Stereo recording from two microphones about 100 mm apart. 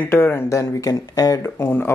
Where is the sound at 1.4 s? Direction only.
20° left (ahead or behind).